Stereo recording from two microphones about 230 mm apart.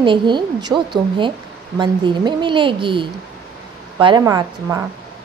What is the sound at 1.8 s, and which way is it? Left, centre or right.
A woman's voice, right.